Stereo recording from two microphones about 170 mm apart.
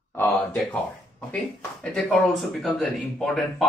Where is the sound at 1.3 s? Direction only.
5° left (ahead or behind).